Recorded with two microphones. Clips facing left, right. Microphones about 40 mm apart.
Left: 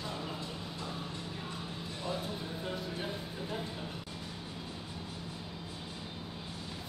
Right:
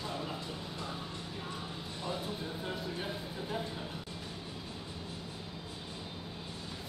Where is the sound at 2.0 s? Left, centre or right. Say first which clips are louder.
Even; centre.